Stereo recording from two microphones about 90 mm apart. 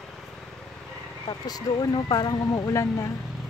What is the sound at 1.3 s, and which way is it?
Speech, 45° left (ahead or behind).